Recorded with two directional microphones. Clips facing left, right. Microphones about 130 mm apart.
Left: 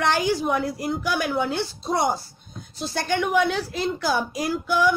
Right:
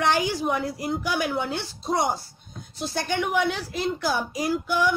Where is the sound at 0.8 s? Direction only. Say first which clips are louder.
Left 1 dB; 15° right (ahead or behind).